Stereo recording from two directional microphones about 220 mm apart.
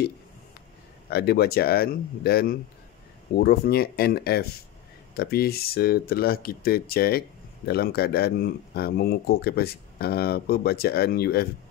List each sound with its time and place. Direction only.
1.1 s speech: 45° left (ahead or behind)